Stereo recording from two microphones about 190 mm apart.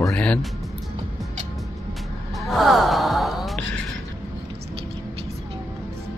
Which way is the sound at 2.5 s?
Centre (ahead or behind).